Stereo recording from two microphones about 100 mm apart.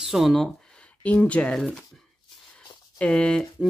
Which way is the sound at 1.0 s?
15° left (ahead or behind).